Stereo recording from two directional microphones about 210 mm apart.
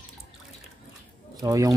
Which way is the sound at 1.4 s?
15° right (ahead or behind).